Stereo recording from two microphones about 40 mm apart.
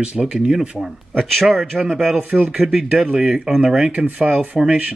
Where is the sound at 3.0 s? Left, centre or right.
Right.